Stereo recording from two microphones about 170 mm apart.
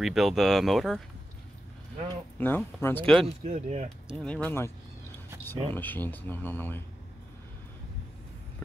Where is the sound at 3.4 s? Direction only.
40° right (ahead or behind).